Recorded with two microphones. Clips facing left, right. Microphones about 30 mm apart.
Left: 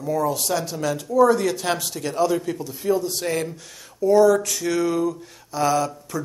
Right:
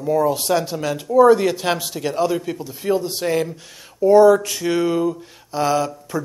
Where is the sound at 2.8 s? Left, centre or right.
Right.